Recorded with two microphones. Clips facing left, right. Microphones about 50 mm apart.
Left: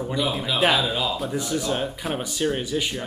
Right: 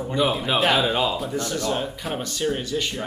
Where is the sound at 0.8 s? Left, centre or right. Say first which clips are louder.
Right 3 dB; right.